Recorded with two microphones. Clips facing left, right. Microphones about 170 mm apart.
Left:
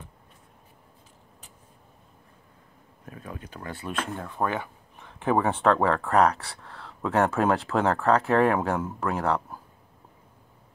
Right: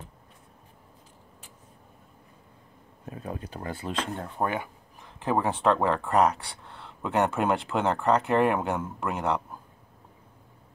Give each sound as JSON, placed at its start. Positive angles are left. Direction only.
{"t": 3.1, "sound": "speech", "side_deg": -35}
{"t": 3.9, "sound": "speech", "side_deg": -20}
{"t": 4.9, "sound": "speech", "side_deg": 0}